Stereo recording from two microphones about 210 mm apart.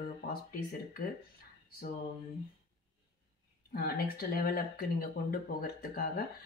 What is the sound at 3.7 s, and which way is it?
Speech, 45° left (ahead or behind).